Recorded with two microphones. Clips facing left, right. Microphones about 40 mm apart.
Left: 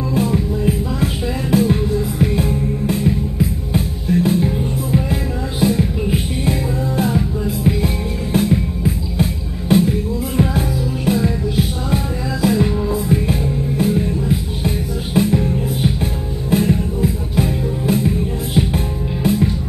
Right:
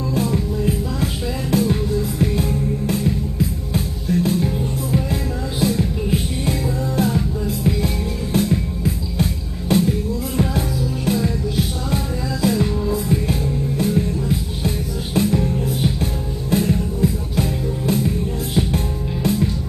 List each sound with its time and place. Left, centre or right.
0.1 s music: centre